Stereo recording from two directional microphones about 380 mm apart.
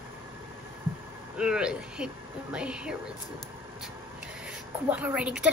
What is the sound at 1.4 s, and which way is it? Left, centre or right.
A woman's voice, centre.